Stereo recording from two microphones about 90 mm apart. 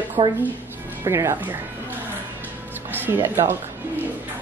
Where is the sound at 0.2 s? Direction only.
60° right (ahead or behind).